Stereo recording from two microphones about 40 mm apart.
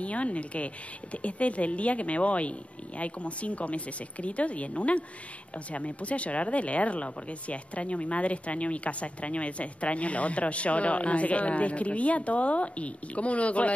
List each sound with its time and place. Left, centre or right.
0.0 s speech: left